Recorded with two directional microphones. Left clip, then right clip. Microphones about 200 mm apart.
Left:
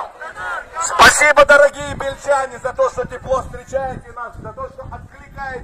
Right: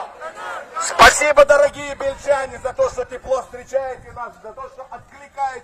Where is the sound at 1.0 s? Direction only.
15° left (ahead or behind).